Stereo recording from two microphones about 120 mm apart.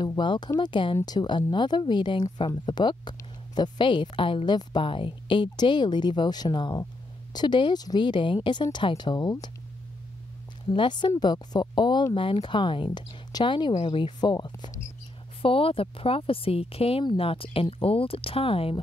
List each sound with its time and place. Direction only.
0.0 s speech: 40° left (ahead or behind)
10.7 s speech: 40° left (ahead or behind)
15.4 s speech: 50° left (ahead or behind)